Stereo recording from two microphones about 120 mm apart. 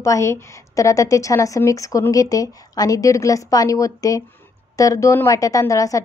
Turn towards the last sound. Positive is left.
turn(degrees=30)  # may be behind; listen again after turning